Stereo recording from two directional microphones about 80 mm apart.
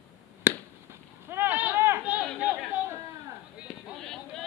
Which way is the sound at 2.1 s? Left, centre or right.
Centre.